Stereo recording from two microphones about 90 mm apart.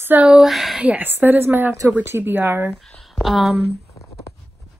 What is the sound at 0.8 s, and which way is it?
Speech, 20° right (ahead or behind).